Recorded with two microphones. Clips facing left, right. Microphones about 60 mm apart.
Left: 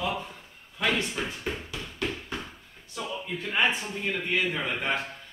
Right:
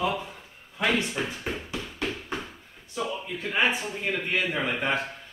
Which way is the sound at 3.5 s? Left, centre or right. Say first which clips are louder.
Right 1 dB; centre.